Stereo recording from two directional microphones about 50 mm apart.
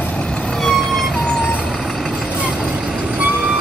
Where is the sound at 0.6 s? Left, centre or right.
Centre.